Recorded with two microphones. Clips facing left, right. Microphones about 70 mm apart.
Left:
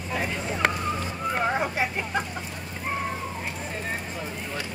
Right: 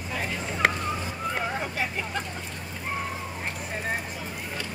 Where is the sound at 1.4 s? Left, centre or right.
Left.